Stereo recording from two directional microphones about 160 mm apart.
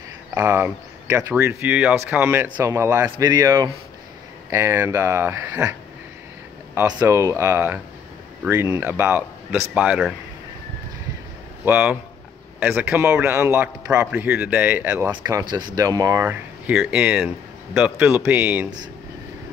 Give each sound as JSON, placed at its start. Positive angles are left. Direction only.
{"t": 0.3, "sound": "speech", "side_deg": -20}
{"t": 11.6, "sound": "speech", "side_deg": -10}
{"t": 15.0, "sound": "speech", "side_deg": -25}